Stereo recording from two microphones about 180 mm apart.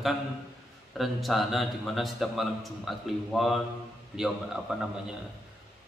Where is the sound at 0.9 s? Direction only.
Centre (ahead or behind).